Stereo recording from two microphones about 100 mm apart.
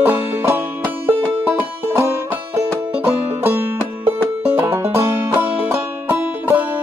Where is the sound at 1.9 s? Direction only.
25° right (ahead or behind).